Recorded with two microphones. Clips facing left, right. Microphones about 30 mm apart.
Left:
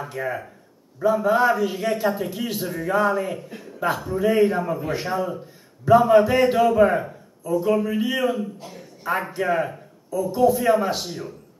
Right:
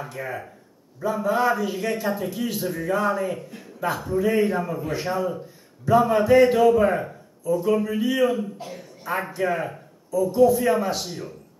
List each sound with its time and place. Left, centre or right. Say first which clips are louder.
0.2 s a man's voice: left 6 dB; centre
8.5 s speech: right 3 dB; centre
9.1 s a man's voice: left 2 dB; centre